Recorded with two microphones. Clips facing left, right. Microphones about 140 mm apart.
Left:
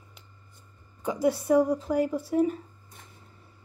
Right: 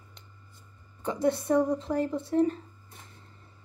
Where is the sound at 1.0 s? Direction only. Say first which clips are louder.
Left 1 dB; 5° left (ahead or behind).